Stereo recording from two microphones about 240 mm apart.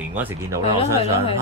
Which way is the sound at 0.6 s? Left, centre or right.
Left.